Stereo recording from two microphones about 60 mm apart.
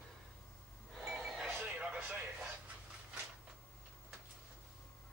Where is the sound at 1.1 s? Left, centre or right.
Centre.